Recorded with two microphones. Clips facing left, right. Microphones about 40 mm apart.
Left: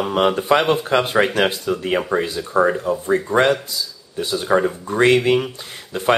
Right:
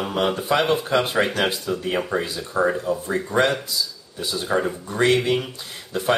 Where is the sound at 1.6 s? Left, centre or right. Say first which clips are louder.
Left 4 dB; left.